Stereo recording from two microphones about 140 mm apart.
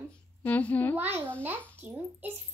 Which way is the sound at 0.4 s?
10° left (ahead or behind).